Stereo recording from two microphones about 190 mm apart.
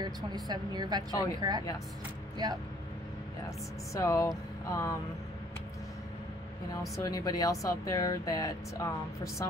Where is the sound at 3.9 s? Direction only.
15° left (ahead or behind).